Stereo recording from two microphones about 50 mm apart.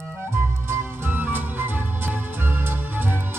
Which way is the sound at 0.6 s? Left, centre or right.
Right.